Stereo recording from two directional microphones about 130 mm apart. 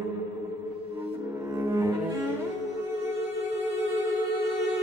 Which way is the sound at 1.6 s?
25° right (ahead or behind).